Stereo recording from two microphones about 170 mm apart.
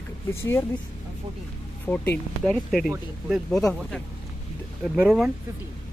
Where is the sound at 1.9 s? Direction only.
5° left (ahead or behind).